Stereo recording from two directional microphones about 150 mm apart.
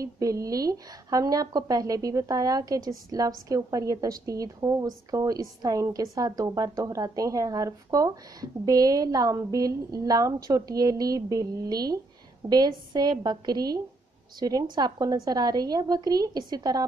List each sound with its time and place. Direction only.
0.0 s a woman's voice: 20° right (ahead or behind)